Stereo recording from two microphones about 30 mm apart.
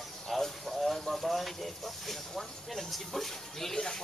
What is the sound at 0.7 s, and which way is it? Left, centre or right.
Speech, centre.